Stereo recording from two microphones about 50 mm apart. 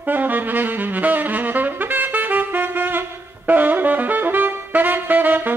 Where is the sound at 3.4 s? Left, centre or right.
Right.